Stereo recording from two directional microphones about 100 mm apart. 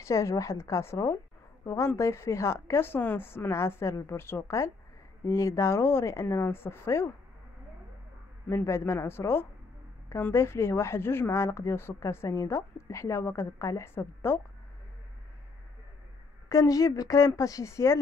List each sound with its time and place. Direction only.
0.0 s a woman's voice: 30° left (ahead or behind)
8.5 s a woman's voice: 30° left (ahead or behind)
16.4 s a woman's voice: 35° left (ahead or behind)